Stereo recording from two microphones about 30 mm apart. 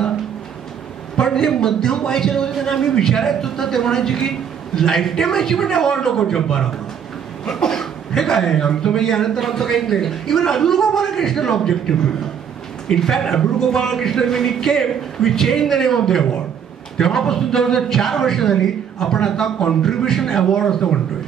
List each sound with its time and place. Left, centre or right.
1.1 s a man's voice: centre